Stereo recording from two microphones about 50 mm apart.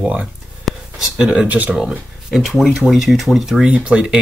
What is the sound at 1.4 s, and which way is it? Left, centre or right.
Speech, right.